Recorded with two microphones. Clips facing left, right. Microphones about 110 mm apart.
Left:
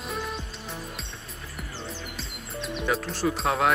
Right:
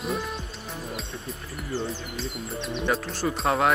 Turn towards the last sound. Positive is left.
turn(degrees=0)  # may be behind; listen again after turning